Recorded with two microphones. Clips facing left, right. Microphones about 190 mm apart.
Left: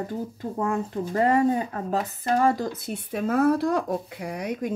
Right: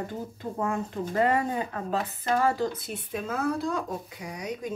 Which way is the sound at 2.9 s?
55° left (ahead or behind).